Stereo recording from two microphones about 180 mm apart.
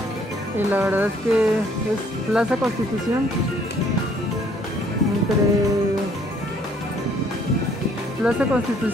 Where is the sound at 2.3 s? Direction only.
5° right (ahead or behind).